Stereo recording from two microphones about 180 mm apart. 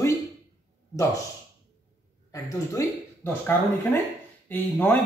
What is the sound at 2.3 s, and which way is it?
Speech, 15° left (ahead or behind).